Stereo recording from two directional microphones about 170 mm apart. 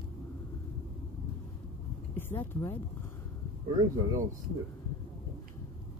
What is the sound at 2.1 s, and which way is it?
Speech, 10° left (ahead or behind).